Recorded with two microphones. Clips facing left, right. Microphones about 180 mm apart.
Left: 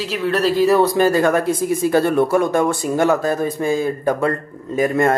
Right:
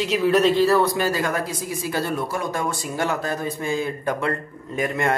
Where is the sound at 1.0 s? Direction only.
55° left (ahead or behind).